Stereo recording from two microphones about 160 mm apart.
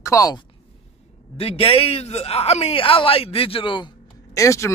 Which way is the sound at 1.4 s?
35° left (ahead or behind).